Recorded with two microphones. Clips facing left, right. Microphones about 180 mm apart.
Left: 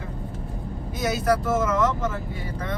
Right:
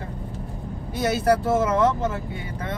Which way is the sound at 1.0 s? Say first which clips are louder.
Right 2 dB; 30° right (ahead or behind).